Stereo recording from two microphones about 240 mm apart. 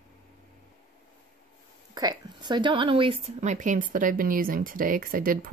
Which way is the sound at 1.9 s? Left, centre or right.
Centre.